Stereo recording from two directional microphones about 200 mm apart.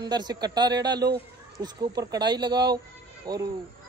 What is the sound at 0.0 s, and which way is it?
Speech, 20° right (ahead or behind).